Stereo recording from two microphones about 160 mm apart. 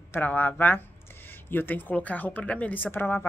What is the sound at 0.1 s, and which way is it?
Speech, 10° left (ahead or behind).